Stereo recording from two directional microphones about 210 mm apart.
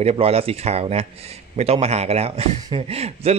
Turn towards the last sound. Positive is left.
turn(degrees=-30)  # may be behind; listen again after turning